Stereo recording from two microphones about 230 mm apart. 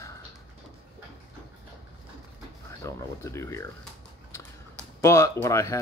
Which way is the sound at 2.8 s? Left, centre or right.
Centre.